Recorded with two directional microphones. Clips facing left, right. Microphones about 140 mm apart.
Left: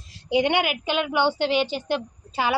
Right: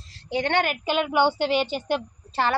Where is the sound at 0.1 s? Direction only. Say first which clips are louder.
Left 3 dB; 15° left (ahead or behind).